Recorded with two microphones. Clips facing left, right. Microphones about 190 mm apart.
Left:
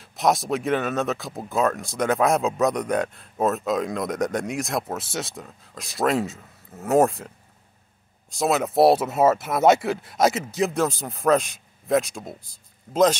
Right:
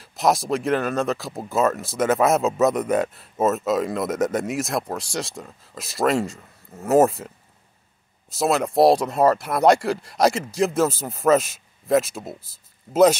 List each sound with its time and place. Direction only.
0.0 s speech: centre (ahead or behind)